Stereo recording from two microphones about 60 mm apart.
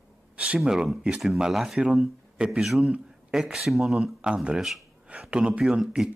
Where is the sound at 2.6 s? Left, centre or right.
Centre.